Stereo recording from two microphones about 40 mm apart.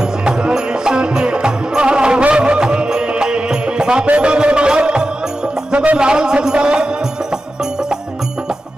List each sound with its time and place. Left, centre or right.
0.2 s music: right